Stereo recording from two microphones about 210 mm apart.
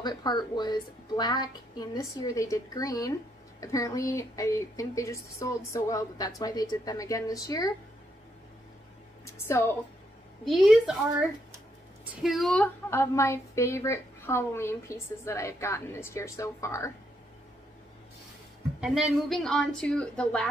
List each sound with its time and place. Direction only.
0.0 s a woman's voice: 20° left (ahead or behind)
9.2 s a woman's voice: 10° left (ahead or behind)
10.4 s a woman's voice: centre (ahead or behind)
18.8 s speech: 5° right (ahead or behind)